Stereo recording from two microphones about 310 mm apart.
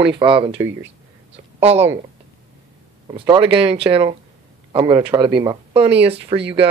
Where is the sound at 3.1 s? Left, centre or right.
Centre.